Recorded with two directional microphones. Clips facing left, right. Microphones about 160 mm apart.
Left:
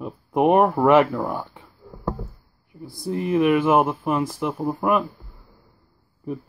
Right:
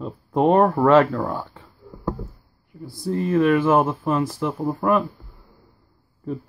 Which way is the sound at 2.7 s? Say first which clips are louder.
Right 2 dB; 15° left (ahead or behind).